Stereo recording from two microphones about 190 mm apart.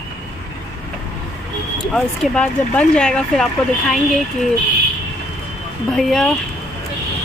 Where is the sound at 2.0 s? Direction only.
5° left (ahead or behind).